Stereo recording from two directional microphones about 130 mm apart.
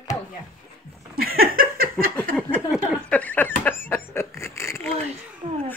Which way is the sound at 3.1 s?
10° left (ahead or behind).